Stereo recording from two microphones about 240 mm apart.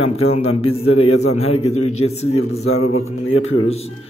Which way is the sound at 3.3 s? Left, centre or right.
Left.